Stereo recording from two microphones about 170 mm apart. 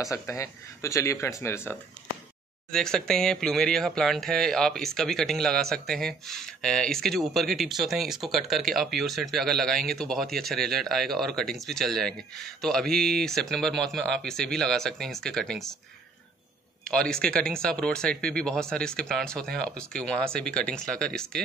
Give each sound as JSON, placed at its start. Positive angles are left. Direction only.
{"t": 0.0, "sound": "speech", "side_deg": 20}
{"t": 2.7, "sound": "speech", "side_deg": 5}
{"t": 16.8, "sound": "speech", "side_deg": 5}